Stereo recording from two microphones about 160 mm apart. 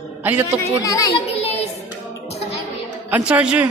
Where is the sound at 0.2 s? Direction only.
10° right (ahead or behind).